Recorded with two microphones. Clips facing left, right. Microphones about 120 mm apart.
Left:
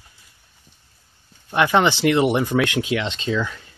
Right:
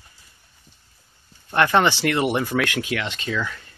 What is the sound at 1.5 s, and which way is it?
Speech, 15° left (ahead or behind).